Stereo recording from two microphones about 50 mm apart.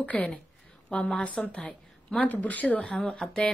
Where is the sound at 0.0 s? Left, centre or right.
Left.